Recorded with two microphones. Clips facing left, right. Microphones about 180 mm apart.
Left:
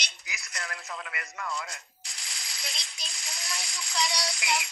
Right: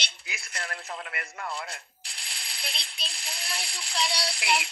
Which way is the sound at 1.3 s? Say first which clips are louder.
Left 1 dB; 30° right (ahead or behind).